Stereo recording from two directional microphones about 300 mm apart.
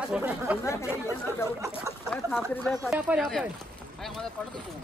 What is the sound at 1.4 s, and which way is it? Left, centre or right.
Speech, centre.